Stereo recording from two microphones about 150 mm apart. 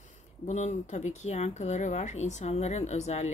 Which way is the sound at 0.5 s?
55° left (ahead or behind).